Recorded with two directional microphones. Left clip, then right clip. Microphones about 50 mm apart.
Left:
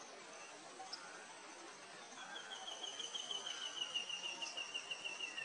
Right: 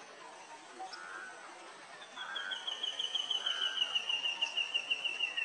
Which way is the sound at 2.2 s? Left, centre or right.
Right.